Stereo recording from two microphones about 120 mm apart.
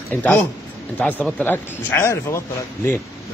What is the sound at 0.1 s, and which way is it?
A man's voice, 15° left (ahead or behind).